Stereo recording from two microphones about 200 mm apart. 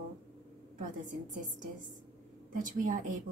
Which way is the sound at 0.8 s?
40° right (ahead or behind).